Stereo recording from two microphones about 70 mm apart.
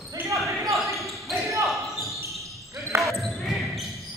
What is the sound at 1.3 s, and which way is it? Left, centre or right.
Basketball bounce, right.